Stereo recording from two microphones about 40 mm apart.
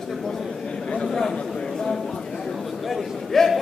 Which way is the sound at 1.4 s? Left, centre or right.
Left.